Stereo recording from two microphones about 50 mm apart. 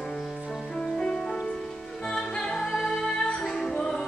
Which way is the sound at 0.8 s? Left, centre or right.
Centre.